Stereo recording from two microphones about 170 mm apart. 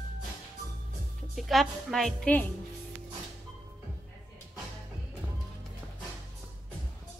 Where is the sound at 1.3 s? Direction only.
Centre (ahead or behind).